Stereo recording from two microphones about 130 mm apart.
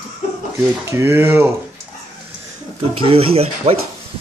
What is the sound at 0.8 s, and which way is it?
Speech, 20° right (ahead or behind).